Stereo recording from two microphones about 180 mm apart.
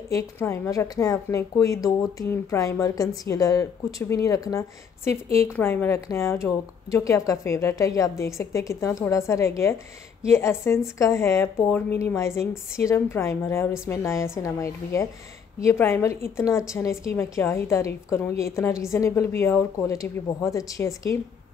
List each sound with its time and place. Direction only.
0.1 s a woman's voice: 15° left (ahead or behind)